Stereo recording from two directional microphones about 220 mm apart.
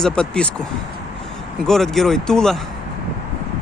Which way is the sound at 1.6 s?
Centre (ahead or behind).